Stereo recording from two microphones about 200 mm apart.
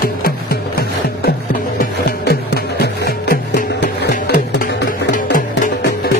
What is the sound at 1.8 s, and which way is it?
Music, 55° left (ahead or behind).